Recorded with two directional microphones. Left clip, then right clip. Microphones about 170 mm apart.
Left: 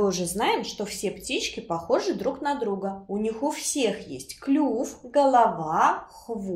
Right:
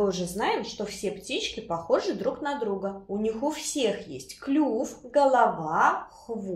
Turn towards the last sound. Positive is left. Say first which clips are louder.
# left 1 dB
turn(degrees=30)  # may be behind; listen again after turning